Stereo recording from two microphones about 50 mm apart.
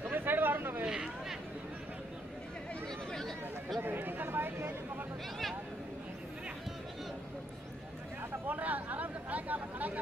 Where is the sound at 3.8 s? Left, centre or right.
Right.